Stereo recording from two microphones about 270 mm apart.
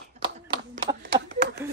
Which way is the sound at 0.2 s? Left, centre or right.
Centre.